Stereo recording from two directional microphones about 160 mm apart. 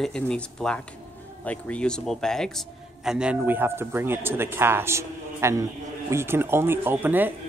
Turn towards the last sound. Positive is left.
turn(degrees=-10)  # may be behind; listen again after turning